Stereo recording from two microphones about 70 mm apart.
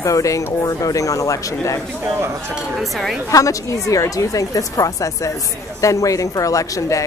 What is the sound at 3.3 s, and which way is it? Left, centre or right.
A woman's voice, left.